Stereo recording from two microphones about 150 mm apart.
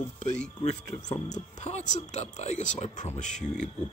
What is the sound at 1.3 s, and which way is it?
Speech, 50° left (ahead or behind).